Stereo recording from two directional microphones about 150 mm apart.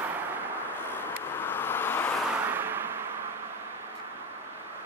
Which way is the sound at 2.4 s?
15° right (ahead or behind).